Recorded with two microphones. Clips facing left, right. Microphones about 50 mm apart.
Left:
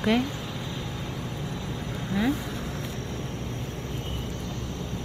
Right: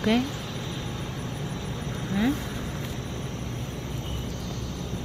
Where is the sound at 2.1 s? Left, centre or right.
Centre.